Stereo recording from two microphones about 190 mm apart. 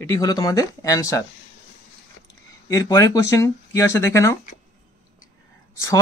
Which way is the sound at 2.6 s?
15° left (ahead or behind).